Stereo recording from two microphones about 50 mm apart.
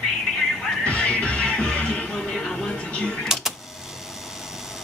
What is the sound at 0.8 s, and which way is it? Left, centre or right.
Music, left.